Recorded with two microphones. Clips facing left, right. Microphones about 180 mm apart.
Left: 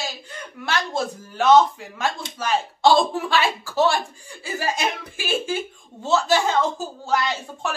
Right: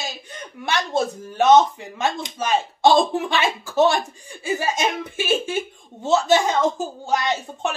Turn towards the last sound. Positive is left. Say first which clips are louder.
# right 3 dB
turn(degrees=-20)  # may be behind; listen again after turning